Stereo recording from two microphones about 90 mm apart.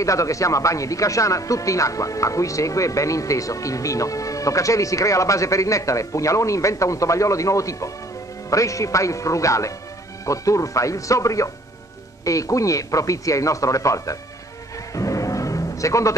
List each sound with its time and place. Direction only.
0.0 s speech: 35° left (ahead or behind)
15.0 s music: 35° left (ahead or behind)